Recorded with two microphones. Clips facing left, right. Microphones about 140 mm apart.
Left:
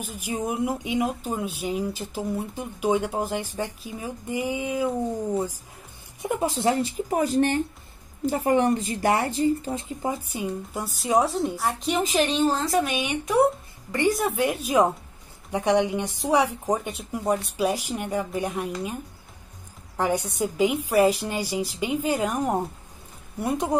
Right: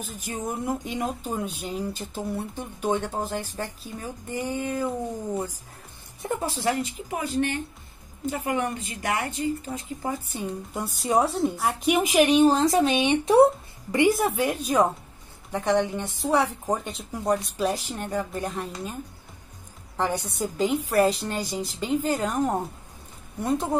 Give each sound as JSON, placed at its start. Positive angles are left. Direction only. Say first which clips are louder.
{"t": 0.0, "sound": "speech", "louder": "left 3 dB", "side_deg": 10}
{"t": 6.2, "sound": "a woman's voice", "louder": "left 3 dB", "side_deg": 20}
{"t": 10.3, "sound": "a woman's voice", "louder": "left 2 dB", "side_deg": 5}
{"t": 11.9, "sound": "a woman's voice", "louder": "right 5 dB", "side_deg": -10}
{"t": 14.2, "sound": "a woman's voice", "louder": "even", "side_deg": 0}
{"t": 20.0, "sound": "speech", "louder": "left 2 dB", "side_deg": 10}